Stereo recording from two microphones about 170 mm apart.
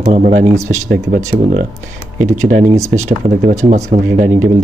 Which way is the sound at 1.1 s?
45° right (ahead or behind).